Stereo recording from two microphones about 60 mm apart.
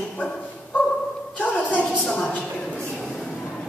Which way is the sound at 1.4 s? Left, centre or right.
Left.